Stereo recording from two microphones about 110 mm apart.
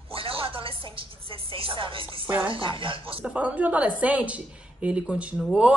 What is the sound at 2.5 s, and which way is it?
Speech, 50° right (ahead or behind).